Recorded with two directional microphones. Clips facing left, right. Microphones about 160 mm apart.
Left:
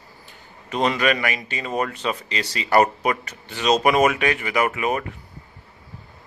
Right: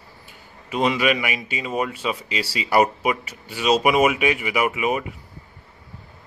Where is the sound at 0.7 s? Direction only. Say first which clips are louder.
Even; 5° right (ahead or behind).